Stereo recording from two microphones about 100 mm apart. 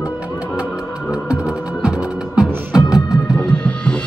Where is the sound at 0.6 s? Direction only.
10° right (ahead or behind).